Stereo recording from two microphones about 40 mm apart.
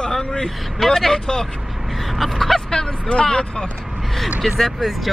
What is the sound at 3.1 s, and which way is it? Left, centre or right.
Speech, left.